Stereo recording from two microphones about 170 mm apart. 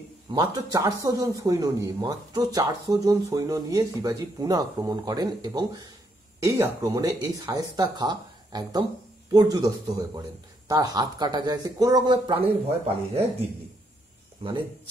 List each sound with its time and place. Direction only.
0.3 s speech: 25° right (ahead or behind)